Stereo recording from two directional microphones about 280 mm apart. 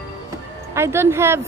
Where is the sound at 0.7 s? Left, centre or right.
Centre.